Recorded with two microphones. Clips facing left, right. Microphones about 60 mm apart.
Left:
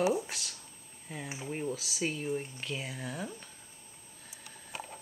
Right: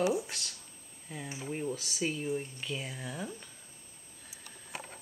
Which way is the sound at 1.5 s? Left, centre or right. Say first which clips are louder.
Even; centre.